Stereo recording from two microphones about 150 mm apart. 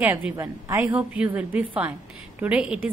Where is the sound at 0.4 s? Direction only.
20° right (ahead or behind).